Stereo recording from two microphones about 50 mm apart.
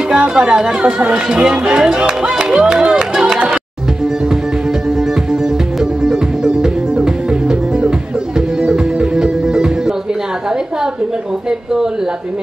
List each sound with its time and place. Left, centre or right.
0.3 s speech: centre
6.0 s music: centre